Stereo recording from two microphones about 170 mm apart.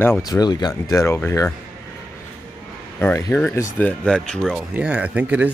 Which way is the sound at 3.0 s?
15° left (ahead or behind).